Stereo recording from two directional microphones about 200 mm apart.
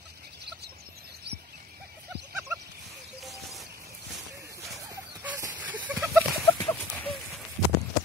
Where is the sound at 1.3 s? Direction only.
55° right (ahead or behind).